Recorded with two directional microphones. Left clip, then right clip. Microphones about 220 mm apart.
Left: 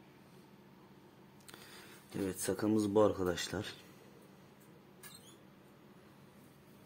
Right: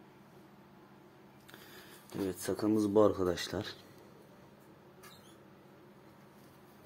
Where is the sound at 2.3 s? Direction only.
10° left (ahead or behind).